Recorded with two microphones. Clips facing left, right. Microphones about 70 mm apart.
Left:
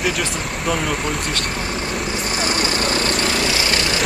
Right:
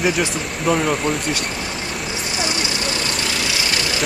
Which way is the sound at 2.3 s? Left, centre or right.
Left.